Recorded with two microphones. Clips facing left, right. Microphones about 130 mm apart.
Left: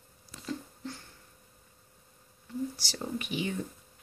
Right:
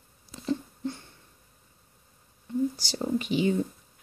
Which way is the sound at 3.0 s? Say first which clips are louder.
Right 8 dB; 30° right (ahead or behind).